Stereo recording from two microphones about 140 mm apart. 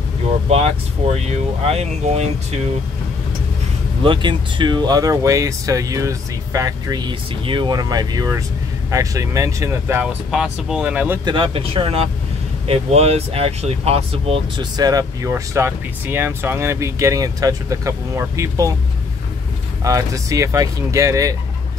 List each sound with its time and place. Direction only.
0.5 s speech: 50° right (ahead or behind)
4.0 s speech: 35° right (ahead or behind); by 10.0 s 20° right (ahead or behind)
10.3 s speech: 5° right (ahead or behind)
11.2 s speech: 35° right (ahead or behind)
14.8 s speech: 25° right (ahead or behind)
19.8 s speech: 25° right (ahead or behind)